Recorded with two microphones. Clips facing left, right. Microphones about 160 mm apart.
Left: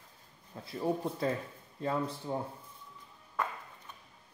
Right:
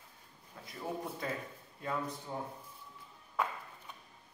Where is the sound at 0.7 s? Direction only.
30° left (ahead or behind).